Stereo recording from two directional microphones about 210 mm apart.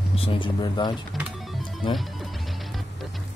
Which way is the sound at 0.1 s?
25° left (ahead or behind).